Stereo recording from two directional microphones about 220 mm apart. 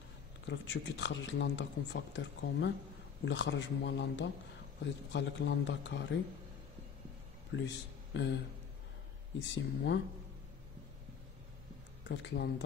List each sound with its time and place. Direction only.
0.5 s speech: 55° left (ahead or behind)
7.5 s speech: 55° left (ahead or behind)
9.4 s speech: 55° left (ahead or behind)
12.1 s speech: 55° left (ahead or behind)